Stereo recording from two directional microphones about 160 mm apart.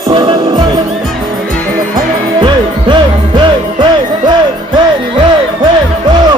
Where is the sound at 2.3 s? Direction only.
30° right (ahead or behind).